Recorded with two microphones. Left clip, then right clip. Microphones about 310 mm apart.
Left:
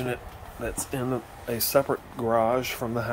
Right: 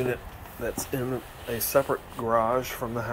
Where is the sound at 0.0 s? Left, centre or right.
Centre.